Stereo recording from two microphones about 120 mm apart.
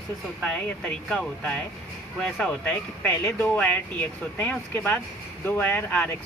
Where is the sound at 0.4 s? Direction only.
5° left (ahead or behind).